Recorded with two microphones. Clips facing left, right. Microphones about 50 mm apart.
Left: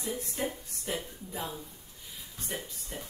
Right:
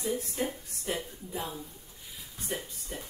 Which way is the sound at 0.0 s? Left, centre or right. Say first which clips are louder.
Right 2 dB; centre.